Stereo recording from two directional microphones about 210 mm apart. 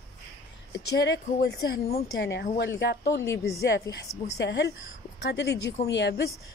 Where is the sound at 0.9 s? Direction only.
55° left (ahead or behind).